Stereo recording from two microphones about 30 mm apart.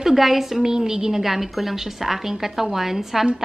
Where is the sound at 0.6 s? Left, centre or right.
Centre.